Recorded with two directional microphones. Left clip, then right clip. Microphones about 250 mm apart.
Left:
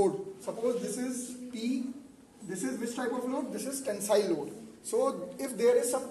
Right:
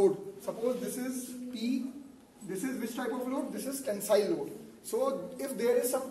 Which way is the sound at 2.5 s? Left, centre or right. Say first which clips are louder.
Left 1 dB; centre.